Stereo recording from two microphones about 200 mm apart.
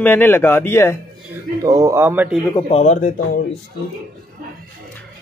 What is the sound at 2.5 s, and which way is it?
Speech, 30° left (ahead or behind).